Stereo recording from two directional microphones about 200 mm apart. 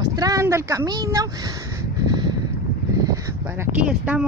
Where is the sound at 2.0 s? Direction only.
20° right (ahead or behind).